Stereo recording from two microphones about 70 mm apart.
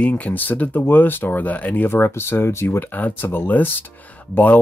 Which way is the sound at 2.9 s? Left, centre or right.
Left.